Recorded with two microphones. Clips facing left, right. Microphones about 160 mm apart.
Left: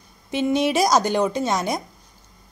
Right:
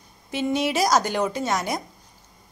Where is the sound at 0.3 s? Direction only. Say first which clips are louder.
Left 3 dB; 20° left (ahead or behind).